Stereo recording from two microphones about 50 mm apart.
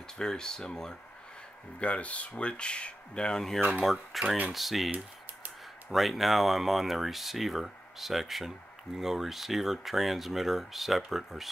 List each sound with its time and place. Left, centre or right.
0.2 s speech: centre
1.8 s speech: left
3.8 s speech: centre